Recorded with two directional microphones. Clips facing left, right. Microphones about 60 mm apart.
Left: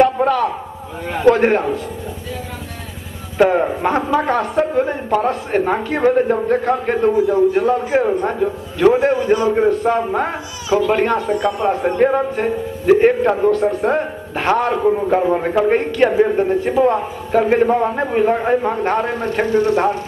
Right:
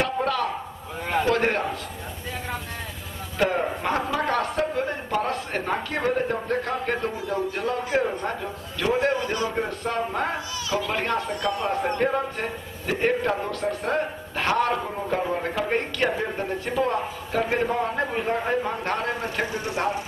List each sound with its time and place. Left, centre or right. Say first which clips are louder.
0.0 s chop: left 11 dB; centre
1.3 s a man's voice: left 9 dB; left
3.3 s a man's voice: left 9 dB; left
11.7 s a man's voice: left 6 dB; centre
12.0 s a man's voice: left 9 dB; centre
19.0 s a man's voice: left 7 dB; centre